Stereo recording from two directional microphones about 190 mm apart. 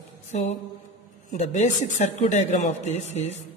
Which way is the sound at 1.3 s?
35° left (ahead or behind).